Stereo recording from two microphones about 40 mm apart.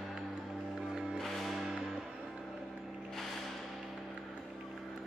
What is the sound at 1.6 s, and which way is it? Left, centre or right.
Music, centre.